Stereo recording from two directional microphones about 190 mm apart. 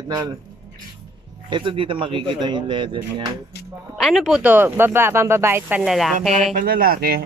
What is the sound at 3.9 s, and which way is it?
Speech, centre (ahead or behind).